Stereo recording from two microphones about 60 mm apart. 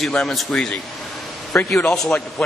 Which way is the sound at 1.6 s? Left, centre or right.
Left.